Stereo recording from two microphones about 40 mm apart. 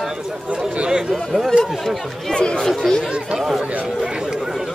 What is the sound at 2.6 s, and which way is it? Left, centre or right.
Speech, centre.